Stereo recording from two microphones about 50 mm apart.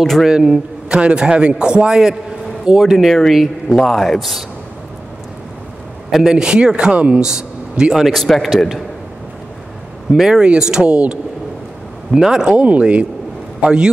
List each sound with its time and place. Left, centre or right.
0.0 s a man's voice: centre
0.3 s a man's voice: centre
3.1 s a man's voice: centre
6.1 s a man's voice: centre
7.2 s speech: centre
7.9 s a man's voice: centre
10.1 s a man's voice: centre
12.1 s a man's voice: centre
12.5 s speech: right